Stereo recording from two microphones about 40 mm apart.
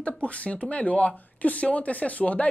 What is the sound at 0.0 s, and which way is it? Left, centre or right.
Speech, left.